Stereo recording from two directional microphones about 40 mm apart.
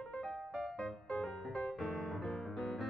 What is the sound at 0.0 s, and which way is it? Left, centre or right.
Music, centre.